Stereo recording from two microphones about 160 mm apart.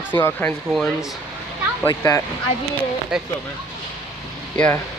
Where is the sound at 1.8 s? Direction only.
20° left (ahead or behind).